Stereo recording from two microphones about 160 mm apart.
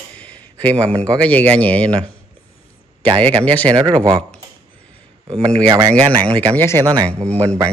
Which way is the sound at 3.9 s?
25° right (ahead or behind).